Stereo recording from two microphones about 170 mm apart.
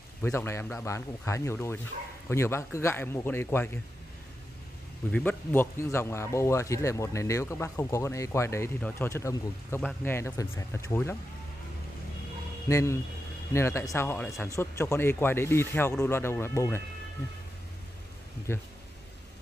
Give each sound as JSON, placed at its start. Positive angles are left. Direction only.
{"t": 0.2, "sound": "speech", "side_deg": 15}
{"t": 5.5, "sound": "speech", "side_deg": 15}
{"t": 12.6, "sound": "speech", "side_deg": 15}
{"t": 18.5, "sound": "speech", "side_deg": 15}